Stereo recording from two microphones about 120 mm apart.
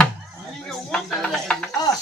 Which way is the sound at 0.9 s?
5° left (ahead or behind).